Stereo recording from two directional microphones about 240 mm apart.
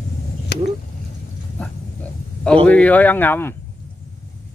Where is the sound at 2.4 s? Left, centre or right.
Centre.